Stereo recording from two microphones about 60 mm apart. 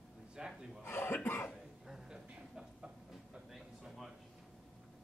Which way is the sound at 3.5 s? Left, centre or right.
Centre.